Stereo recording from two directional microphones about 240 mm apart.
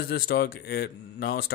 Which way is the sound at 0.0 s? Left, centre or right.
Left.